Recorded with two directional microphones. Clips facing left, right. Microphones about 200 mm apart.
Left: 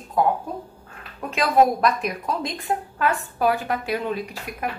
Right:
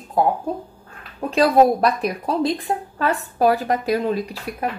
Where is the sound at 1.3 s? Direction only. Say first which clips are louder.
Right 4 dB; 35° right (ahead or behind).